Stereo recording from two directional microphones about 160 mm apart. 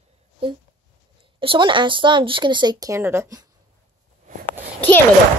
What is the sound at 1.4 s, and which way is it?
Speech, 30° right (ahead or behind).